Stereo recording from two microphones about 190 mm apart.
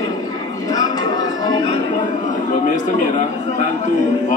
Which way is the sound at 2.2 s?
40° left (ahead or behind).